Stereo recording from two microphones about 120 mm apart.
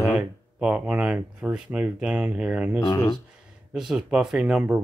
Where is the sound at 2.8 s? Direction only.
30° left (ahead or behind).